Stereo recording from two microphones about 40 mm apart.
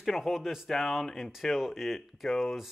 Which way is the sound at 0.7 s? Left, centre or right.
Centre.